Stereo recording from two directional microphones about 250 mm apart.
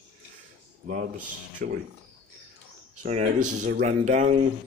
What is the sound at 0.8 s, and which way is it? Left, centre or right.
Speech, right.